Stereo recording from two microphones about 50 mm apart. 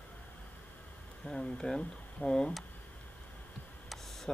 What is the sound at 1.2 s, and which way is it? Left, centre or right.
Speech, centre.